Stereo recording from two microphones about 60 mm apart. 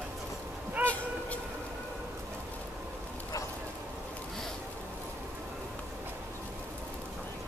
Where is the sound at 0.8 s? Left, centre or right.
Left.